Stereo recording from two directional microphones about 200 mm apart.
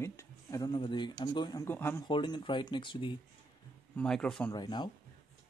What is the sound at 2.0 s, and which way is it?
Speech, 25° left (ahead or behind).